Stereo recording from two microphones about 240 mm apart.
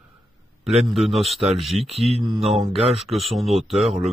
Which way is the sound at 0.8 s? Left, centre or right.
Centre.